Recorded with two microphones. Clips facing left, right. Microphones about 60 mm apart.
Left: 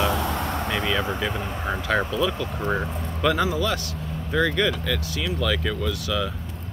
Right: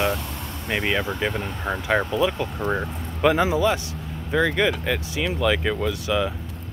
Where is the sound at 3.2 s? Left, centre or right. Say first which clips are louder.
Right 4 dB; right.